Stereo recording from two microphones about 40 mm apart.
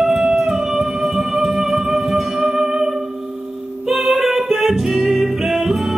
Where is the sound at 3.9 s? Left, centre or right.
Centre.